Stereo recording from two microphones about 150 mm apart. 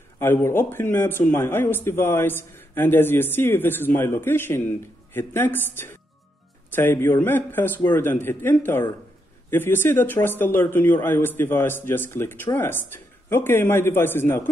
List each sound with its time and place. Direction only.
0.2 s speech: 15° left (ahead or behind)